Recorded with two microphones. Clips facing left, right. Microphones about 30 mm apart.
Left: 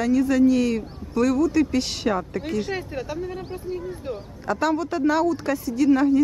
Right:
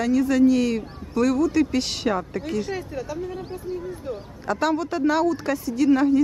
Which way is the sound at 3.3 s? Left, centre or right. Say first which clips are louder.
Even; centre.